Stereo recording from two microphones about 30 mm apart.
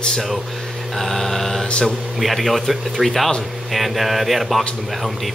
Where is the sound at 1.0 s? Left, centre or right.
Centre.